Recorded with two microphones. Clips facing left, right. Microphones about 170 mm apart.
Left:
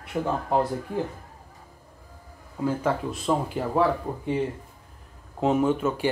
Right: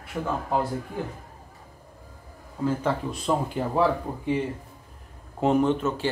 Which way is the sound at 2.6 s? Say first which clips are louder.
Even; 5° left (ahead or behind).